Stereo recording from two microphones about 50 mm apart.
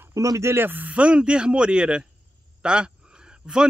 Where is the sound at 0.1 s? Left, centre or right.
Right.